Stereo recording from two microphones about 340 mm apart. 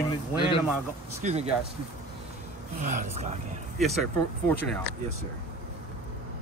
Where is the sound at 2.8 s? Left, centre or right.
Right.